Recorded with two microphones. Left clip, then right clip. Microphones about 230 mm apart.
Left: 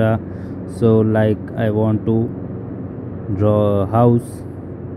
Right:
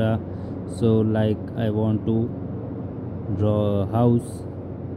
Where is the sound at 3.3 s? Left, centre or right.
Centre.